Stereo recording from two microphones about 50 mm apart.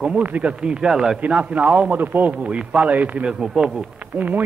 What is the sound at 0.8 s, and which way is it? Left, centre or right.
Speech, centre.